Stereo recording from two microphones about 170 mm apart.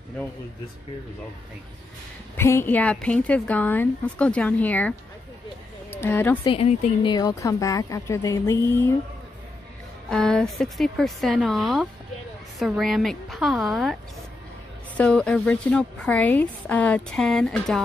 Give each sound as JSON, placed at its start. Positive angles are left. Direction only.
{"t": 2.3, "sound": "a woman's voice", "side_deg": 15}
{"t": 5.9, "sound": "a woman's voice", "side_deg": 10}
{"t": 6.4, "sound": "a woman's voice", "side_deg": 35}
{"t": 7.1, "sound": "a woman's voice", "side_deg": 20}
{"t": 10.0, "sound": "speech", "side_deg": 5}
{"t": 15.0, "sound": "a woman's voice", "side_deg": 5}